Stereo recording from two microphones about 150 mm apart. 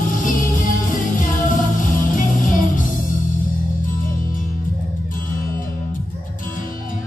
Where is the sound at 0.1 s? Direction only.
65° left (ahead or behind).